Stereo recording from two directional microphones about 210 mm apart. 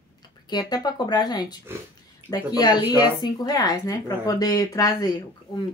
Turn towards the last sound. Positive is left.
turn(degrees=20)  # may be behind; listen again after turning